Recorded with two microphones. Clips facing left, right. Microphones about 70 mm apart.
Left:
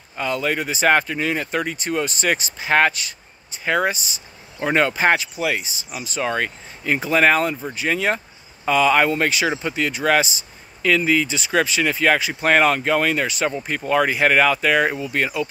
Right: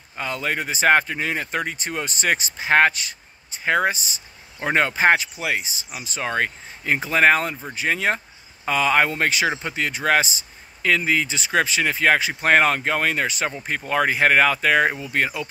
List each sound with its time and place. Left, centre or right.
0.2 s speech: right